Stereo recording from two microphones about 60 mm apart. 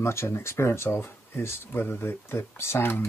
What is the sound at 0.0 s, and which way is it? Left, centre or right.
Speech, left.